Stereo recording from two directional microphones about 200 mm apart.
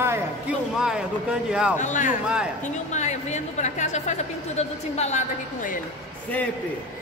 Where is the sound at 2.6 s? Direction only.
35° left (ahead or behind).